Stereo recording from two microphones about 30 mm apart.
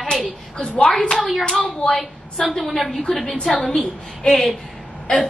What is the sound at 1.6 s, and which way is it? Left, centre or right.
Speech, centre.